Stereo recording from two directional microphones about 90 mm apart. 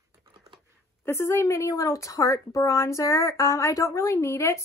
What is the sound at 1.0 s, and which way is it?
A woman's voice, 30° left (ahead or behind).